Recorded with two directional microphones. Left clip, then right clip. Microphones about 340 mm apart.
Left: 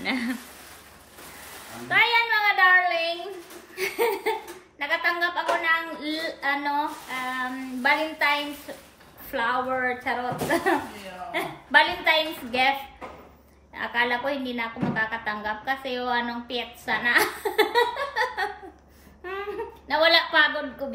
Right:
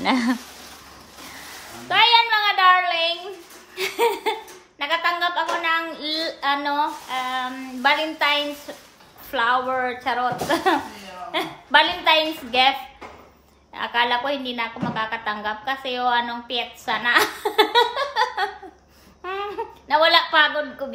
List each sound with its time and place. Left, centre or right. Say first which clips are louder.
0.0 s a sound: right 7 dB; centre
1.9 s a sound: right 5 dB; centre
3.7 s laughter: right 4 dB; centre
4.7 s a woman's voice: right 3 dB; centre
13.7 s a woman's voice: right 4 dB; centre
19.9 s a woman's voice: right 3 dB; centre